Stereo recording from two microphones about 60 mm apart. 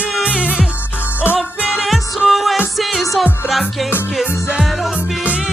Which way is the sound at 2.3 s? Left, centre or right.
Centre.